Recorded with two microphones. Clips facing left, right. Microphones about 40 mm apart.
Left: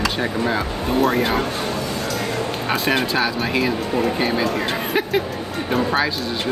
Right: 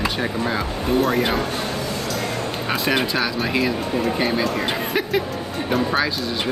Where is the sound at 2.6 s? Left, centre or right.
Centre.